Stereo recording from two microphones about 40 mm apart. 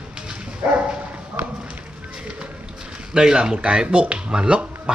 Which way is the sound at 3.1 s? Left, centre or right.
Centre.